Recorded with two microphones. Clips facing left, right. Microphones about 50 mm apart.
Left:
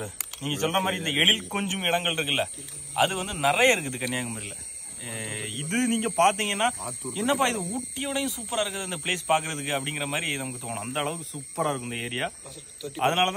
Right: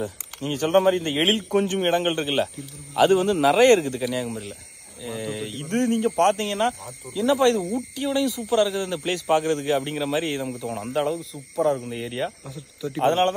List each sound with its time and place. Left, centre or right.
0.0 s speech: left
4.1 s speech: left
10.9 s speech: left
11.1 s speech: left